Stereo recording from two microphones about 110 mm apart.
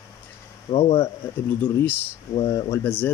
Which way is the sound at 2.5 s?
25° left (ahead or behind).